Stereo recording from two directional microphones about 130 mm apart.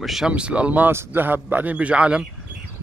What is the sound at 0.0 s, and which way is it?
A man's voice, centre (ahead or behind).